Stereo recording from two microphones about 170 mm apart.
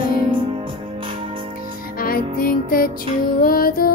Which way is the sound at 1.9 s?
60° left (ahead or behind).